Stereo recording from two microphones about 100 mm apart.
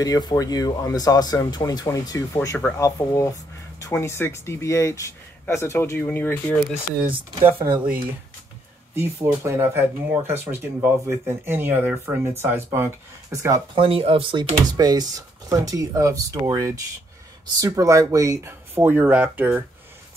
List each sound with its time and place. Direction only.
0.0 s speech: 40° left (ahead or behind)
2.3 s speech: 25° left (ahead or behind)
7.6 s speech: 15° right (ahead or behind)
8.9 s speech: 30° right (ahead or behind)
13.7 s speech: 65° right (ahead or behind)
14.8 s speech: 45° right (ahead or behind); by 19.6 s 15° right (ahead or behind)